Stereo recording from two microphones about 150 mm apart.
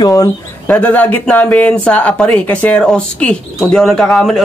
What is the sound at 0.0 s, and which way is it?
Speech, 20° left (ahead or behind).